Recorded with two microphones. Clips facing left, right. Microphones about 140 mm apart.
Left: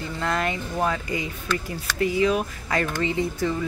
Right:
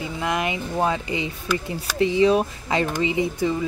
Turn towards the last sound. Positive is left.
turn(degrees=-15)  # may be behind; listen again after turning